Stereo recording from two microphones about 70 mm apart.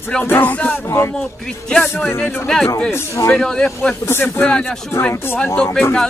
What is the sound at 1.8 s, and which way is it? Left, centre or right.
Speech, left.